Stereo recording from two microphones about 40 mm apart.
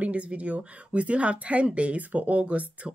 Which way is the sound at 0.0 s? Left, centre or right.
Right.